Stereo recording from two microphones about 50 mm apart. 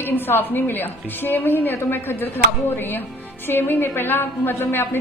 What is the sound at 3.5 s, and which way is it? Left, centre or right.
A woman's voice, left.